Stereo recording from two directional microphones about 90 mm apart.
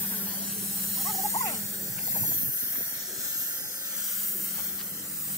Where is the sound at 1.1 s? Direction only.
35° left (ahead or behind).